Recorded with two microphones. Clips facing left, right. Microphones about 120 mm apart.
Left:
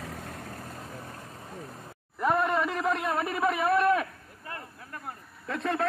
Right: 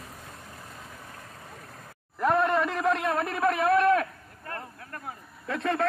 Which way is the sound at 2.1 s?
Centre (ahead or behind).